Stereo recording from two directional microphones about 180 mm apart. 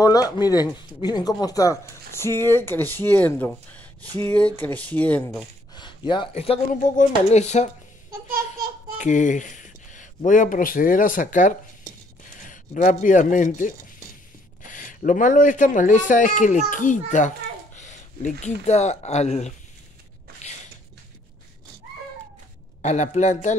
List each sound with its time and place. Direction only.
0.0 s speech: 20° left (ahead or behind)
5.8 s speech: 25° left (ahead or behind)
6.7 s a man's voice: 45° left (ahead or behind)
8.9 s a man's voice: 45° left (ahead or behind)
22.8 s a man's voice: 40° left (ahead or behind)